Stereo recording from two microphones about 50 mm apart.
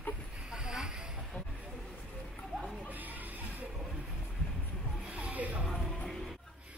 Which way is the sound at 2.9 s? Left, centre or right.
Right.